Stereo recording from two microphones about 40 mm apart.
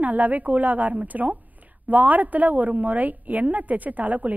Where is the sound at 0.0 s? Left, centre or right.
Right.